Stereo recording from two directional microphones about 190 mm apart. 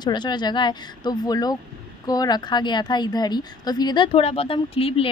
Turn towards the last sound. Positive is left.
turn(degrees=30)  # may be behind; listen again after turning